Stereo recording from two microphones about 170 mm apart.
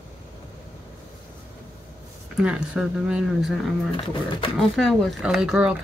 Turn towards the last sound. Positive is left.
turn(degrees=-5)  # may be behind; listen again after turning